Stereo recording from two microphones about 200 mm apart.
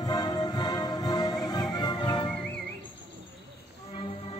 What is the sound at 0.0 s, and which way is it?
Music, 20° left (ahead or behind).